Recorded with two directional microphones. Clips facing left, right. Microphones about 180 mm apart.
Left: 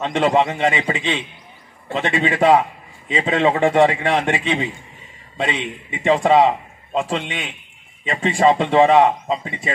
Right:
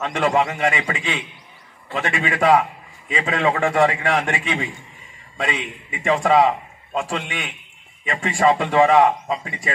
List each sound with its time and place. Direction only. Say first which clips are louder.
0.0 s a man's voice: left 3 dB; 30° left (ahead or behind)